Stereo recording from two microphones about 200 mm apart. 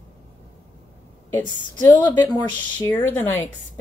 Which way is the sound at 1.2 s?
10° left (ahead or behind).